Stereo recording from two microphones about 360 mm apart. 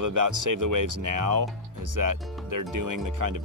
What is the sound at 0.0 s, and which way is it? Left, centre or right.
Speech, right.